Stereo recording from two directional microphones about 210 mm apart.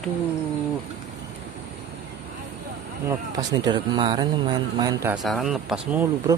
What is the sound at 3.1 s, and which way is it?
Speech, 20° right (ahead or behind).